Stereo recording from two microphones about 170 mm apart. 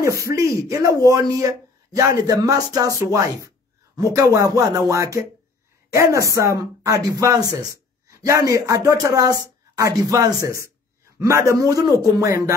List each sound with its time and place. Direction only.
0.0 s speech: 15° right (ahead or behind)